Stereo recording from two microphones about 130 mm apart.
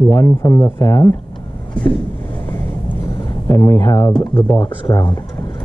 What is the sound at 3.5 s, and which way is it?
Speech, 20° left (ahead or behind).